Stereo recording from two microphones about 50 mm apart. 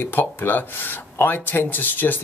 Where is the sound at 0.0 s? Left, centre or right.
Left.